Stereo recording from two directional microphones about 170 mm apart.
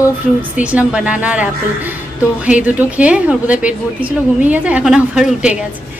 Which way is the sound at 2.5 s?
10° right (ahead or behind).